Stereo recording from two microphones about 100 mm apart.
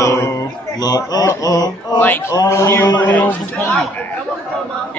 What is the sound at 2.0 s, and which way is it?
Speech, 20° left (ahead or behind).